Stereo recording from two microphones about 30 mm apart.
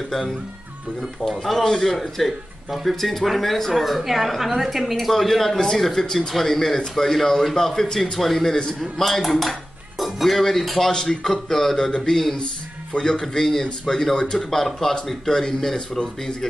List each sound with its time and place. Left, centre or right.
1.2 s speech: right
1.6 s a man's voice: centre
2.0 s speech: centre
5.6 s a man's voice: centre
8.9 s cutlery: centre
10.6 s speech: centre
10.9 s a man's voice: centre
11.9 s a man's voice: left
13.2 s a man's voice: centre